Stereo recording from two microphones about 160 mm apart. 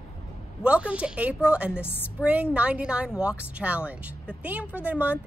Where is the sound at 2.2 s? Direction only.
10° right (ahead or behind).